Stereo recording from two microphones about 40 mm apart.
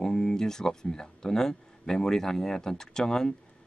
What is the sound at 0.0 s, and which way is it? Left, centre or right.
Speech, centre.